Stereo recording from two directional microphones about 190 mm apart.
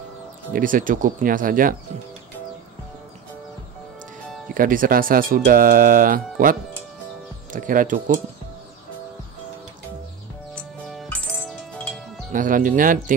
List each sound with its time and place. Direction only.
0.5 s speech: 45° right (ahead or behind)
4.6 s speech: 45° right (ahead or behind)
7.5 s speech: 45° right (ahead or behind)
10.5 s music: 5° left (ahead or behind)
12.3 s speech: 45° right (ahead or behind)